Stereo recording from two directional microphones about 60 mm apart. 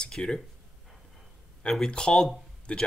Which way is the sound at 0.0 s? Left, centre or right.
Centre.